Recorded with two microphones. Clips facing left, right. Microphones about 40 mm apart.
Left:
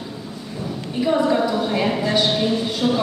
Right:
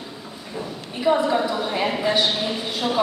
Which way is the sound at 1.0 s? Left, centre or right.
Centre.